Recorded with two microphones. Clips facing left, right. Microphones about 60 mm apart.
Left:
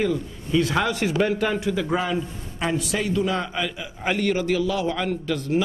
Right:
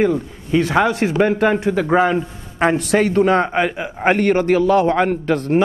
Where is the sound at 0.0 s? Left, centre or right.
Right.